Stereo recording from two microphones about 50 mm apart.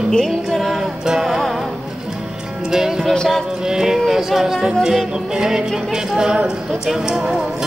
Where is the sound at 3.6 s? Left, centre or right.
Centre.